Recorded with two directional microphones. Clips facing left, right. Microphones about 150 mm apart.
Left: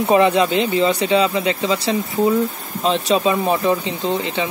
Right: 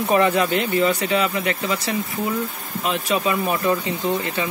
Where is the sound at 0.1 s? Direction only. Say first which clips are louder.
Left 3 dB; 20° left (ahead or behind).